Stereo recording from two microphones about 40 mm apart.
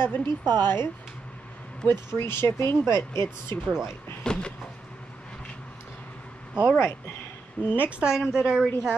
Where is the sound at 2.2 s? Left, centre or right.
Left.